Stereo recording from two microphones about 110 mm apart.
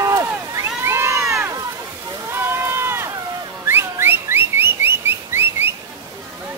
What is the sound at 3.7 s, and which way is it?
Whistling, 20° right (ahead or behind).